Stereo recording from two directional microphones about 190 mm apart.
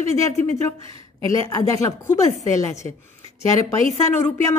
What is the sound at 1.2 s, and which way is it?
A woman's voice, 15° left (ahead or behind).